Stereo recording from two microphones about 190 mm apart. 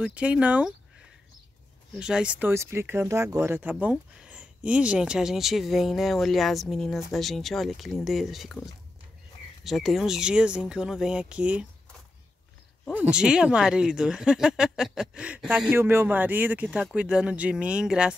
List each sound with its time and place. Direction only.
0.0 s speech: 5° right (ahead or behind)
2.0 s speech: 5° right (ahead or behind)
9.7 s speech: centre (ahead or behind)
13.1 s speech: 5° right (ahead or behind)